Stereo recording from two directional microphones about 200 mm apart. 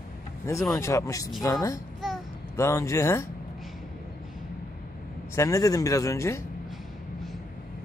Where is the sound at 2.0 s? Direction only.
Centre (ahead or behind).